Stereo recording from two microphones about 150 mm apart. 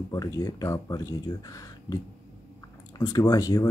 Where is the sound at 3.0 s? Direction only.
25° left (ahead or behind).